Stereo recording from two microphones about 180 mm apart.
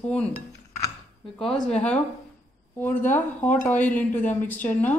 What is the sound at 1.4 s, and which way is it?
Speech, 5° left (ahead or behind).